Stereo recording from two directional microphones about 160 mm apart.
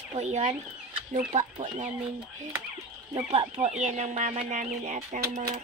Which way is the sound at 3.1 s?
30° right (ahead or behind).